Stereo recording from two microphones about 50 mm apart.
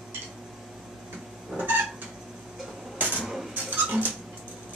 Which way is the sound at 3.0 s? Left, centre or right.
Right.